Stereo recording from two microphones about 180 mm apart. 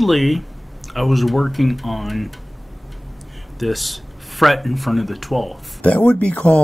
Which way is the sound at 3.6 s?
Centre (ahead or behind).